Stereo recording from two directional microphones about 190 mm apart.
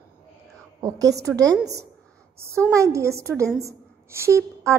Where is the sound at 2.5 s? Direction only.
15° right (ahead or behind).